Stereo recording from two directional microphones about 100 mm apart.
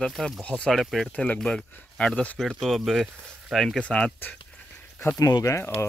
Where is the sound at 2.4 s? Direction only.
Centre (ahead or behind).